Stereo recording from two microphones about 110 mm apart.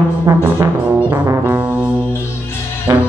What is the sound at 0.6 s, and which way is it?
Music, 30° right (ahead or behind).